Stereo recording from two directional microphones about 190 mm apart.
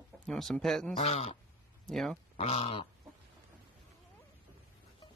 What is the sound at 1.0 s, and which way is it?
Speech, 35° left (ahead or behind).